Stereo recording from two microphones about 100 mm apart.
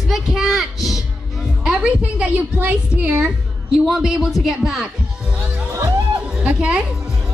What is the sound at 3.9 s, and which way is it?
Speech, 5° right (ahead or behind).